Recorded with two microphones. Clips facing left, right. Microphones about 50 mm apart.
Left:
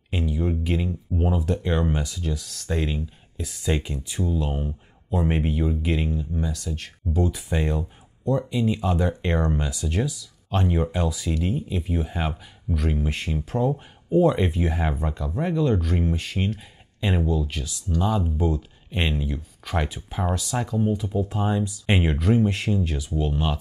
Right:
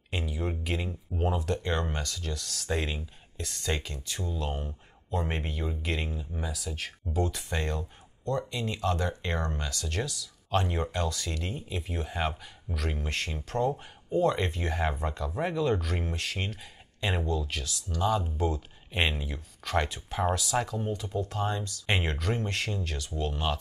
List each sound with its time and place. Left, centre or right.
0.1 s speech: centre